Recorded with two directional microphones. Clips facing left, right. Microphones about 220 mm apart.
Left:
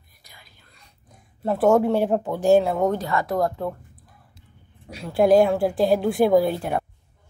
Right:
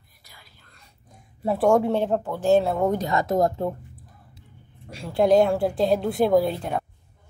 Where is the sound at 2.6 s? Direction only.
Centre (ahead or behind).